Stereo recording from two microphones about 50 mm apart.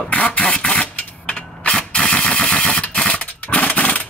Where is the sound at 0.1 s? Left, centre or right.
Left.